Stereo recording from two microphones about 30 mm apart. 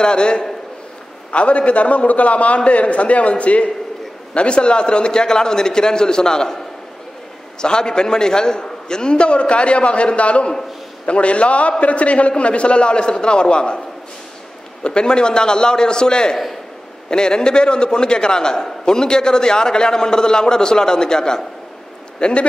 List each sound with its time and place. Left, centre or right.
0.0 s a man's voice: left
1.3 s a man's voice: left
4.3 s a man's voice: left
7.6 s a man's voice: left
9.1 s a man's voice: left
14.8 s a man's voice: left